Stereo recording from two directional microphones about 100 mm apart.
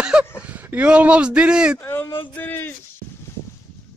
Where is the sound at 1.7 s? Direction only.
20° left (ahead or behind).